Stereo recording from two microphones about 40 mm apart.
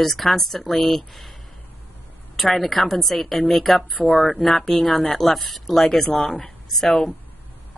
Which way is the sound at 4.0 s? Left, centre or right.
Left.